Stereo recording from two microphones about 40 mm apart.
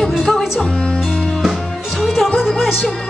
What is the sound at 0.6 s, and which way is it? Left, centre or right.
Speech, left.